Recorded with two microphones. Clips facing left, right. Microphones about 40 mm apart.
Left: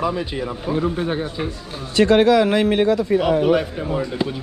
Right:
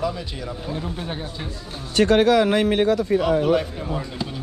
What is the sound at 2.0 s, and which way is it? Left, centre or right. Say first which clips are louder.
Speech: left 2 dB; left.